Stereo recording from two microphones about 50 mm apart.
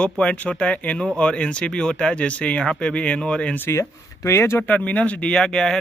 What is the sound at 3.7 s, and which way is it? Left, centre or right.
Speech, left.